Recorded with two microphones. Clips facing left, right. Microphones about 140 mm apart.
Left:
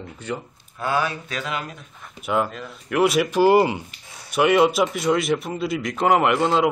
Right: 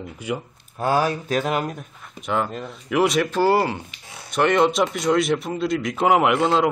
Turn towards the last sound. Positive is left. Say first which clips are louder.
# right 1 dB
turn(degrees=0)  # may be behind; listen again after turning